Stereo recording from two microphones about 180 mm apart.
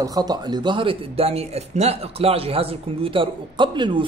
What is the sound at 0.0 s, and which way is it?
A man's voice, 20° right (ahead or behind).